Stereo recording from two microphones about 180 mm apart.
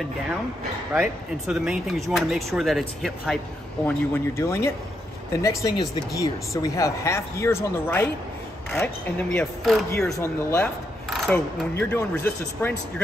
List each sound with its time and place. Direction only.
0.9 s speech: centre (ahead or behind)
3.8 s speech: 15° left (ahead or behind)
11.1 s a sound: centre (ahead or behind)
11.3 s speech: 10° left (ahead or behind)